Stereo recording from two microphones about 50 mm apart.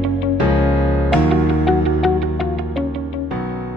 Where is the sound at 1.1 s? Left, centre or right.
Centre.